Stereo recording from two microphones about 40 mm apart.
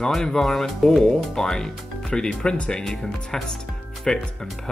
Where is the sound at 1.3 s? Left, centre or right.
Centre.